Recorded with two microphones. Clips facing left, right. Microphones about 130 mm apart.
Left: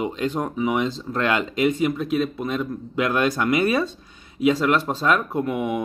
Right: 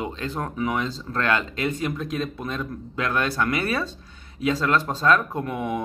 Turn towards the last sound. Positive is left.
turn(degrees=10)  # may be behind; listen again after turning